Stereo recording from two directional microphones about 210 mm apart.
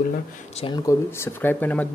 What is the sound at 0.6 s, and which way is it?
Speech, 20° left (ahead or behind).